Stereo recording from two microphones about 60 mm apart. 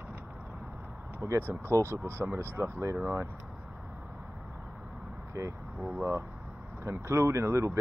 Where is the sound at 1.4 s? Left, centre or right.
Right.